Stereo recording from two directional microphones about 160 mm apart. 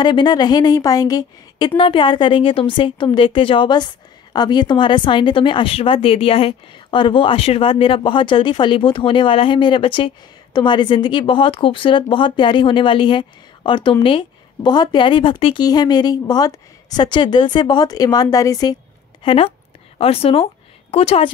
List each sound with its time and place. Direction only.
0.0 s a woman's voice: 25° left (ahead or behind)
19.2 s a woman's voice: 35° left (ahead or behind)